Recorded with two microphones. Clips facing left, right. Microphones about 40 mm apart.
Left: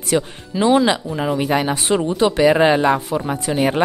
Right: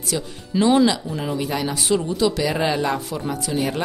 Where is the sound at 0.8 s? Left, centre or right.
Left.